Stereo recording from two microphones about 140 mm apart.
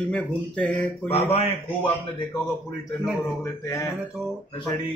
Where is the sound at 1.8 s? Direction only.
35° left (ahead or behind).